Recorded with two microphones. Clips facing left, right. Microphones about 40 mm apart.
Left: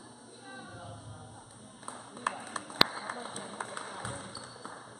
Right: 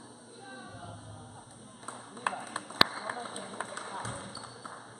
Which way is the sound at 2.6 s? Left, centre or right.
Centre.